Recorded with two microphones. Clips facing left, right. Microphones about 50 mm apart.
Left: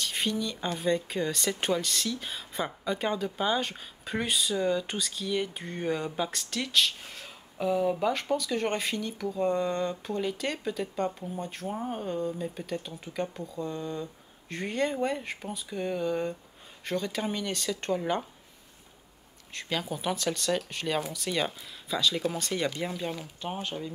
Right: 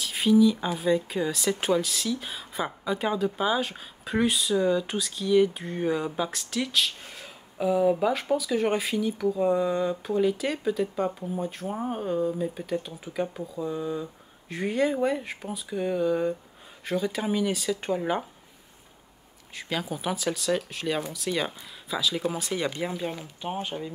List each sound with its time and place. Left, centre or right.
0.0 s speech: centre
19.5 s speech: centre